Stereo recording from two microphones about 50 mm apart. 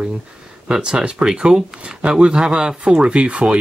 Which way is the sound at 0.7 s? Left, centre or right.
Centre.